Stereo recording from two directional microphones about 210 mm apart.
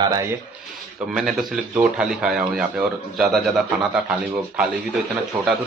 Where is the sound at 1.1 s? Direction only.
Centre (ahead or behind).